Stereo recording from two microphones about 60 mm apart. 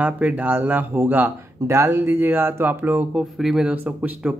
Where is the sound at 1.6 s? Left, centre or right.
Right.